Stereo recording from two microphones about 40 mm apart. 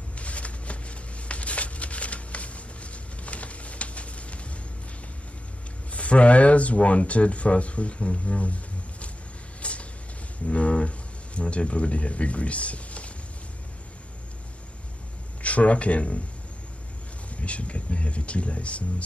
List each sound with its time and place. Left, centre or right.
0.2 s a sound: left
5.9 s speech: left
9.6 s vehicle: left
10.4 s speech: left
15.4 s speech: left
17.4 s speech: left